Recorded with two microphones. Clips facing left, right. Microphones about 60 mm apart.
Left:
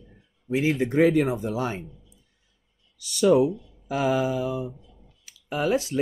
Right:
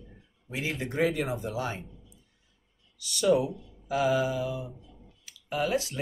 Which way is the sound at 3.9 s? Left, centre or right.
Left.